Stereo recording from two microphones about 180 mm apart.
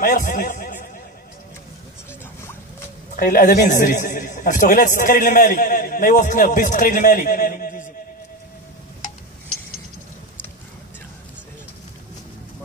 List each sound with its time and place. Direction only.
0.0 s a man's voice: 50° left (ahead or behind)
3.2 s a man's voice: 50° left (ahead or behind)